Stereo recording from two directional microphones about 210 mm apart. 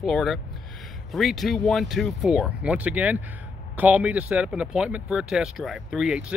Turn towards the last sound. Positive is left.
turn(degrees=0)  # may be behind; listen again after turning